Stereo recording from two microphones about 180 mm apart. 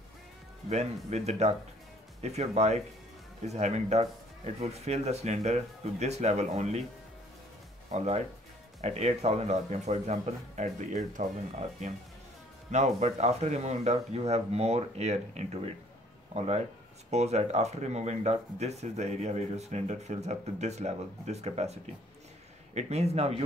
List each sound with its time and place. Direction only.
1.1 s speech: 35° right (ahead or behind)
7.9 s speech: 35° right (ahead or behind)
22.8 s speech: 35° right (ahead or behind)